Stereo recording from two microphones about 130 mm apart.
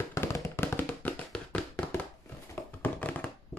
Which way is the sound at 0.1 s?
25° left (ahead or behind).